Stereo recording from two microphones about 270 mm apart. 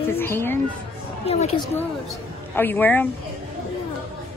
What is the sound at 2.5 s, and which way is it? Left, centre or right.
Speech, centre.